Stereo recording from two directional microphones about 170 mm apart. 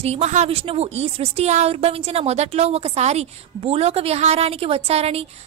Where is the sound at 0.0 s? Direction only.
40° right (ahead or behind).